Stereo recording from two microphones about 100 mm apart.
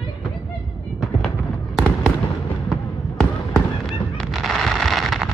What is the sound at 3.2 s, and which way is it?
Fireworks, 5° left (ahead or behind).